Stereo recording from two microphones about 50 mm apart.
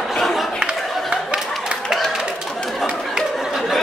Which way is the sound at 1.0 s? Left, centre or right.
Centre.